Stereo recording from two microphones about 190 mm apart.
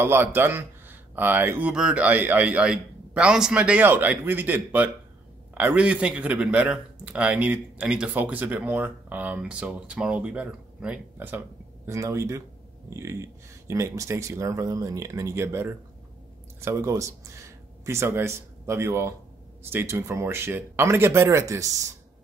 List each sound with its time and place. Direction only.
0.0 s a man's voice: 10° right (ahead or behind)